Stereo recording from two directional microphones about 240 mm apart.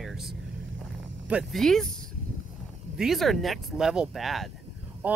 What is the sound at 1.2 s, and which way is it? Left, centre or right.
Speech, centre.